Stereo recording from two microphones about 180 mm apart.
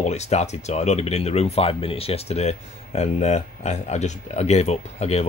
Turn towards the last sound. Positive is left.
turn(degrees=35)  # may be behind; listen again after turning